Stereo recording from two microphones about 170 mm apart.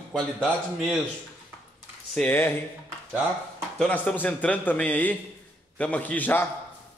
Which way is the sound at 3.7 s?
5° left (ahead or behind).